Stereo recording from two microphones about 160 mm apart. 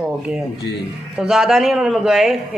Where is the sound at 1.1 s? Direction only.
5° right (ahead or behind).